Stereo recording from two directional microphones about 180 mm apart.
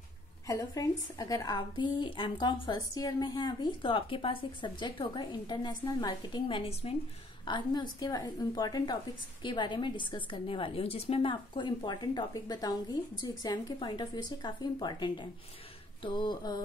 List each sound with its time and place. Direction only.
0.5 s a woman's voice: 20° left (ahead or behind)